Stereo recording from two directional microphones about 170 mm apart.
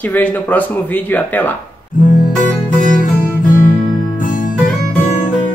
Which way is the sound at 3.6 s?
50° left (ahead or behind).